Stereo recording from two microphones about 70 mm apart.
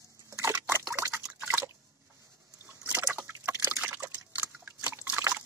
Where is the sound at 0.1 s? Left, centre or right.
Right.